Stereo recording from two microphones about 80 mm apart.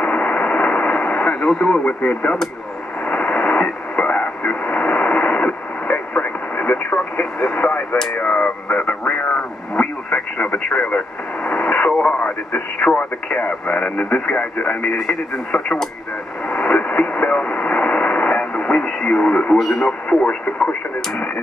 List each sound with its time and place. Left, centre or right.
0.0 s radio: centre
1.5 s speech: centre
3.1 s radio: centre
8.2 s speech: centre
16.4 s radio: centre
19.5 s speech: centre